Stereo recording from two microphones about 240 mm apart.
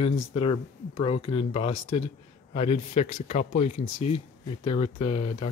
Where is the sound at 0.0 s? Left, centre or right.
Left.